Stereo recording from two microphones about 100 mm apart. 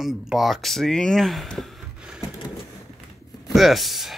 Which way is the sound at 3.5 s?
Centre (ahead or behind).